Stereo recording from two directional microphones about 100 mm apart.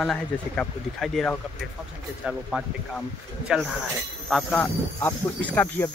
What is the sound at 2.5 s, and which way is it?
Speech, 10° right (ahead or behind).